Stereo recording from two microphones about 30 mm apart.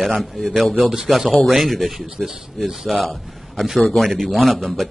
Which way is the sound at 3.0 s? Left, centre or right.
Centre.